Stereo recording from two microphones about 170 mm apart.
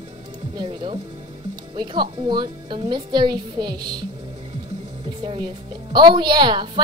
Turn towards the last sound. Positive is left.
turn(degrees=-25)  # may be behind; listen again after turning